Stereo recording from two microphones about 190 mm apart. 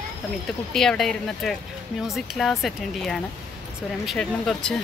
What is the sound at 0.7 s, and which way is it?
A woman's voice, 5° left (ahead or behind).